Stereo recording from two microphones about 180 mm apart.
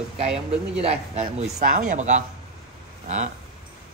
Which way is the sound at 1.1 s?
40° right (ahead or behind).